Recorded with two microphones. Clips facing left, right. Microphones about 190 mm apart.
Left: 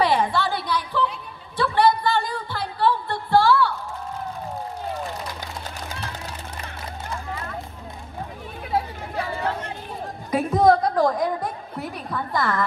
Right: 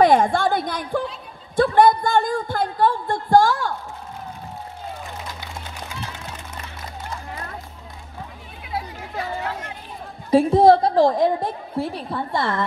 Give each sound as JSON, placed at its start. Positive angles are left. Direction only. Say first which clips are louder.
{"t": 0.0, "sound": "a sound", "louder": "right 5 dB", "side_deg": -50}
{"t": 8.7, "sound": "chatter", "louder": "left 3 dB", "side_deg": 35}
{"t": 10.3, "sound": "a woman's voice", "louder": "right 4 dB", "side_deg": -30}